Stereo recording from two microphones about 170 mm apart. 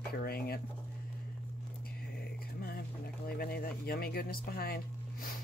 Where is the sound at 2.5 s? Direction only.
65° left (ahead or behind).